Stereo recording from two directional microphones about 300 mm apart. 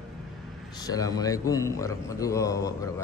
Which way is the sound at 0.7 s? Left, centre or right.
Centre.